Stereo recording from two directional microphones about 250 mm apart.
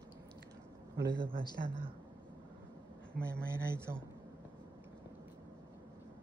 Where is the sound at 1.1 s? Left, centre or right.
Centre.